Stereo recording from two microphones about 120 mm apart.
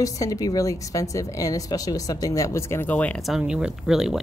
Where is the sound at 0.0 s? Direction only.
30° left (ahead or behind); by 3.2 s 10° left (ahead or behind).